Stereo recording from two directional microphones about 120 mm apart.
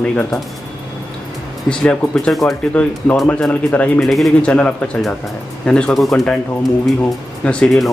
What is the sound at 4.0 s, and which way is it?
Speech, centre (ahead or behind).